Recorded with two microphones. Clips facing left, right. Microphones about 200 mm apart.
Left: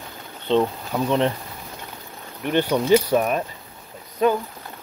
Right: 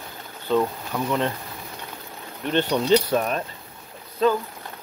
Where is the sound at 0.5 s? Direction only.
25° left (ahead or behind).